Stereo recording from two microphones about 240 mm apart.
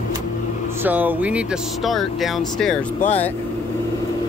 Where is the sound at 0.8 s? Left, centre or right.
Centre.